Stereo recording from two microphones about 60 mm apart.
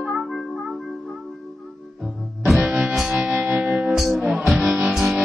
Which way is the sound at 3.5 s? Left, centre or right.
Centre.